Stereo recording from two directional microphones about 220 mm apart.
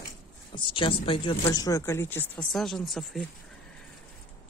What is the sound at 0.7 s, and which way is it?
Speech, 25° left (ahead or behind).